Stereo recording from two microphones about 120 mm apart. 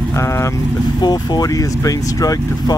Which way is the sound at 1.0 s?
35° left (ahead or behind).